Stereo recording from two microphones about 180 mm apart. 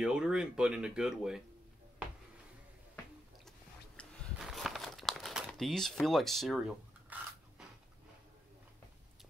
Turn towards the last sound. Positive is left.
turn(degrees=-5)  # may be behind; listen again after turning